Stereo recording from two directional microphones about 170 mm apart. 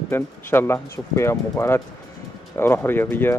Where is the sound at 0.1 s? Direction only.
15° left (ahead or behind).